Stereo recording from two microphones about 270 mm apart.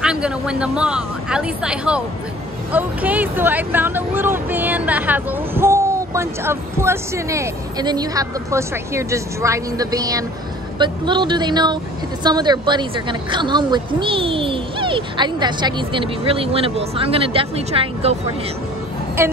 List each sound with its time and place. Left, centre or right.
0.0 s speech: centre; by 18.1 s right
19.2 s speech: centre